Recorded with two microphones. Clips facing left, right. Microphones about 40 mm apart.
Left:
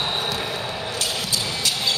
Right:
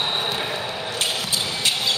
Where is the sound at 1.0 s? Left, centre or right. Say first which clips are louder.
Right 2 dB; right.